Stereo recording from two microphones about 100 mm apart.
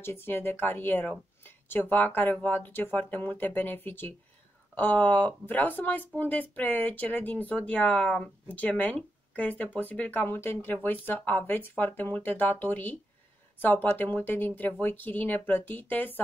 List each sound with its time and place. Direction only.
0.0 s speech: 25° left (ahead or behind)